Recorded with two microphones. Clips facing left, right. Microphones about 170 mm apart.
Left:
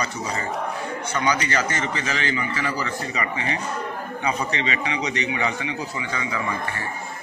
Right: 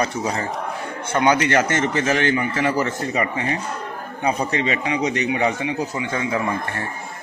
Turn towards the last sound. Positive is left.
turn(degrees=-55)  # may be behind; listen again after turning